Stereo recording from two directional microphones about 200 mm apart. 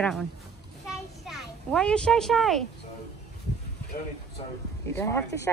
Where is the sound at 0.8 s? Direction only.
Centre (ahead or behind).